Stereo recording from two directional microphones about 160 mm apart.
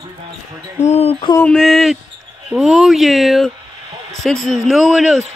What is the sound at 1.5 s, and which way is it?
Speech, centre (ahead or behind).